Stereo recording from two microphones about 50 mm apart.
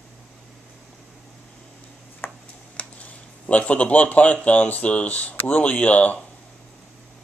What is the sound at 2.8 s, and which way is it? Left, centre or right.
Speech, left.